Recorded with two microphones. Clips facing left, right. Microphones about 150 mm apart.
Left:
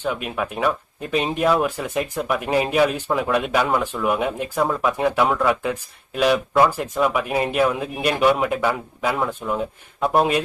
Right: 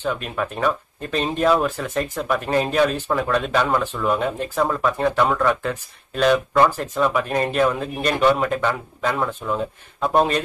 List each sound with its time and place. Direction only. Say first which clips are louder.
0.0 s speech: even; 10° left (ahead or behind)